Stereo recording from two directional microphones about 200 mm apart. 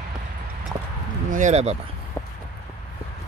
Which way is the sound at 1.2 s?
40° right (ahead or behind).